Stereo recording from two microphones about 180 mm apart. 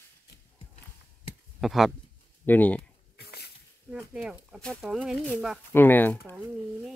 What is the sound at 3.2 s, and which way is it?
Pig, 65° left (ahead or behind).